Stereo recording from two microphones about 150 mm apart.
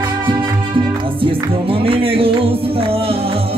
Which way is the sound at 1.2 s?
35° right (ahead or behind).